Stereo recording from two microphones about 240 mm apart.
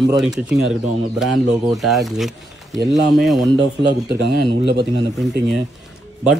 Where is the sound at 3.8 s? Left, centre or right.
Right.